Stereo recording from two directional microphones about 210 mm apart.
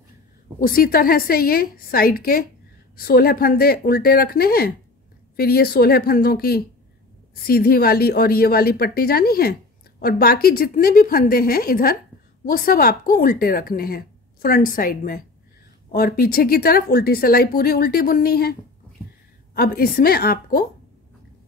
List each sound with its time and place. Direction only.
0.6 s a woman's voice: 45° left (ahead or behind)